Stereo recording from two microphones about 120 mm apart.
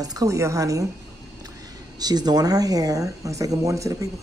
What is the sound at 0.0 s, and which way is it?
Speech, 30° right (ahead or behind).